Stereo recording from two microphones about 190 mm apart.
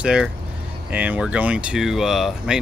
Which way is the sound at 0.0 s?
5° right (ahead or behind).